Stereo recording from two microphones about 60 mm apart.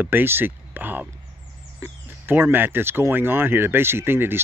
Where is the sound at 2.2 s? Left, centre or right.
Right.